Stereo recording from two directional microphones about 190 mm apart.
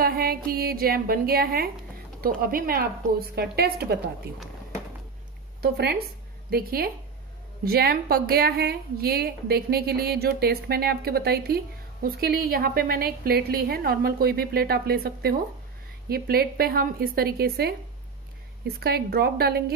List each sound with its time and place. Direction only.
0.0 s a woman's voice: 50° right (ahead or behind)
5.6 s a woman's voice: 60° right (ahead or behind)